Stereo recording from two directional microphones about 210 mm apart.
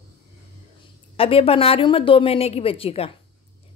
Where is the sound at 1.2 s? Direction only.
25° left (ahead or behind).